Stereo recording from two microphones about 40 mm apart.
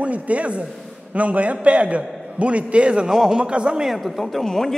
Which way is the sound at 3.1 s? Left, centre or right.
Centre.